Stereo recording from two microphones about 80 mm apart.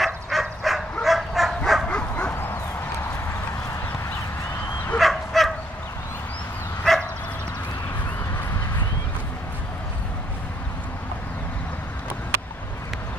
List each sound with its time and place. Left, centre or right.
0.0 s dog: centre
1.9 s bow-wow: centre
2.3 s bow-wow: left
4.9 s bow-wow: centre
6.8 s bow-wow: centre